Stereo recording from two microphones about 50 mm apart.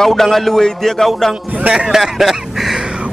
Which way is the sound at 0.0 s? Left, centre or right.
Centre.